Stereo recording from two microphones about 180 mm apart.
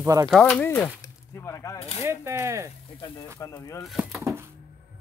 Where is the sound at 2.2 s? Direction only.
15° right (ahead or behind).